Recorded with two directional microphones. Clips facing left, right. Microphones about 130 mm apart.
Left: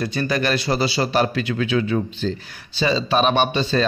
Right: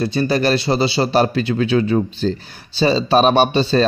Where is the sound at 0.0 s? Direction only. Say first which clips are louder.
Right 5 dB; 30° right (ahead or behind).